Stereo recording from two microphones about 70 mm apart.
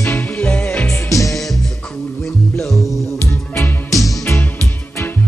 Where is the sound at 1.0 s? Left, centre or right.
Left.